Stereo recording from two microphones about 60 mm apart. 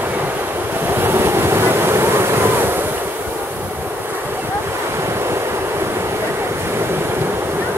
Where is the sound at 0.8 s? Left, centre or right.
Right.